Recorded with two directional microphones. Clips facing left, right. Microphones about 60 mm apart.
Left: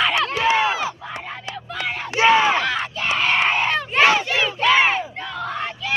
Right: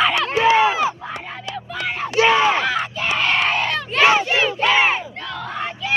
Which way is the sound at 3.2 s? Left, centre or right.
Left.